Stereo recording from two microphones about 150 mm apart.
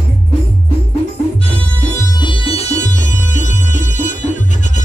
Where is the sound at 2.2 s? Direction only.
35° left (ahead or behind).